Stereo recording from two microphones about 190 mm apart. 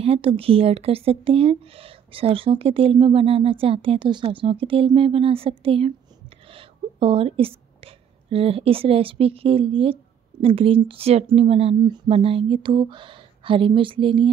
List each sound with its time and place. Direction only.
0.0 s a woman's voice: 30° right (ahead or behind)